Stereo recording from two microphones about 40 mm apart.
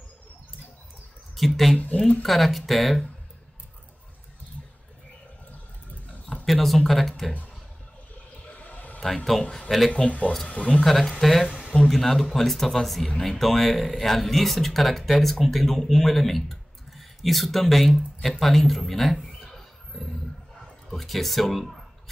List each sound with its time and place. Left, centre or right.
1.3 s speech: centre
6.4 s speech: centre
8.5 s a sound: left
9.0 s speech: centre
10.0 s speech: left
10.8 s speech: centre
20.9 s speech: centre